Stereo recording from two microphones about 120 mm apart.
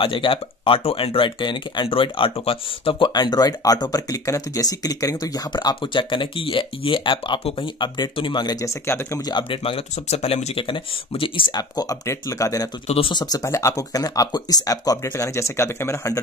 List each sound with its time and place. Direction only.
0.0 s speech: 45° left (ahead or behind); by 9.2 s 25° left (ahead or behind)
9.2 s speech: 40° left (ahead or behind)
12.8 s speech: 55° left (ahead or behind)
13.1 s speech: 35° left (ahead or behind)